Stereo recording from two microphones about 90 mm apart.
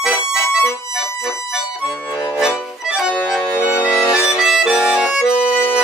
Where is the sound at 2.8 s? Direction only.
5° right (ahead or behind).